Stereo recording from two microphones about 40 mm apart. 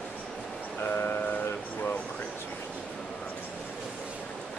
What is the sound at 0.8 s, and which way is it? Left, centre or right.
Train, left.